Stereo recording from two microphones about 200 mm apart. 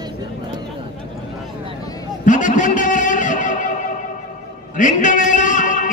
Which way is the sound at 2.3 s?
40° left (ahead or behind).